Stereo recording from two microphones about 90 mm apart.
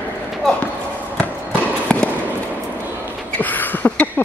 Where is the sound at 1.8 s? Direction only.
10° left (ahead or behind).